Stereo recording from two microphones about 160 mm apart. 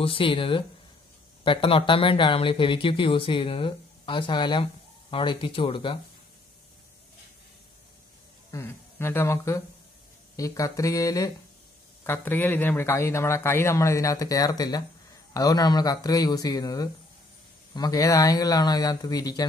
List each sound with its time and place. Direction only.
0.0 s speech: 35° left (ahead or behind)
8.5 s speech: 15° left (ahead or behind)